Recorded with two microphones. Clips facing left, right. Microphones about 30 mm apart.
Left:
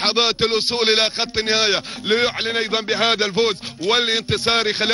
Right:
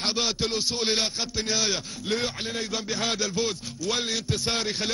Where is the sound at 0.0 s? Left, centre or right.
Left.